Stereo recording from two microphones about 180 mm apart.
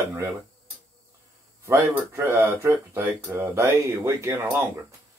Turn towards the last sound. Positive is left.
turn(degrees=-15)  # may be behind; listen again after turning